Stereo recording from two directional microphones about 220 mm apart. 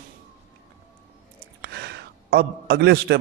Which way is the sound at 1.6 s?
50° right (ahead or behind).